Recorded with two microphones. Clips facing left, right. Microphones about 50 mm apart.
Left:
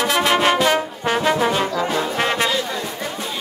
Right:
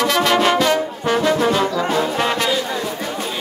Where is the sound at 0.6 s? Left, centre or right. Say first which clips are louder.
Right 1 dB; left.